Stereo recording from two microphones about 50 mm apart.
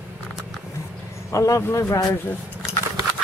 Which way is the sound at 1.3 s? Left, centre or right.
Left.